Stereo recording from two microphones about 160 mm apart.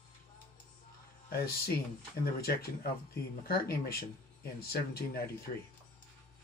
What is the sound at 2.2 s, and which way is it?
A man's voice, 70° left (ahead or behind).